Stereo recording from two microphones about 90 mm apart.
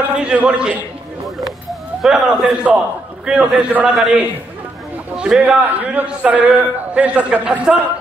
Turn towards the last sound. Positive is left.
turn(degrees=-15)  # may be behind; listen again after turning